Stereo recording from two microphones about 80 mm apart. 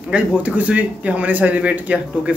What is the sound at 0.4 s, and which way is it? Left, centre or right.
Speech, centre.